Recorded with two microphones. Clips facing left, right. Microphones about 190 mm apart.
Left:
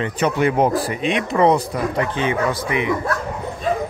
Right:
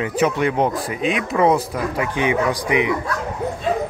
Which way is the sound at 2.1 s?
15° right (ahead or behind).